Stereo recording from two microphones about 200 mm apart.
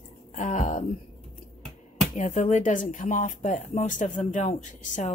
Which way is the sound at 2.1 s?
35° left (ahead or behind).